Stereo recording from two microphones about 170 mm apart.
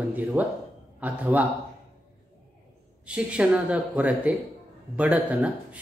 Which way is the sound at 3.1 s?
5° right (ahead or behind).